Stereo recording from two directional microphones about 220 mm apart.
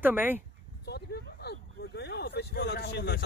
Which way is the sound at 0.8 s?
50° left (ahead or behind).